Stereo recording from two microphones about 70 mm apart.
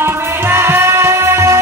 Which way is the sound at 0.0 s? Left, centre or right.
Right.